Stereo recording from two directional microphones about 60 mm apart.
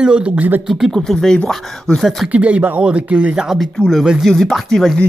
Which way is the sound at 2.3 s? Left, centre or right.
Right.